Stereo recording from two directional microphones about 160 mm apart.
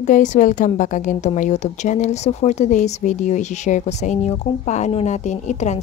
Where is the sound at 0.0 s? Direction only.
50° left (ahead or behind).